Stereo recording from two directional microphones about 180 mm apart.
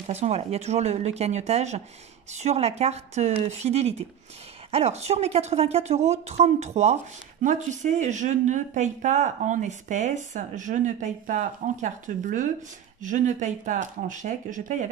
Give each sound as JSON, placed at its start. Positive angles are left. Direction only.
{"t": 0.1, "sound": "a woman's voice", "side_deg": -35}